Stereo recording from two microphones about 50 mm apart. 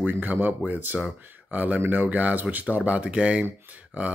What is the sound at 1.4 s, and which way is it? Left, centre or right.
Speech, right.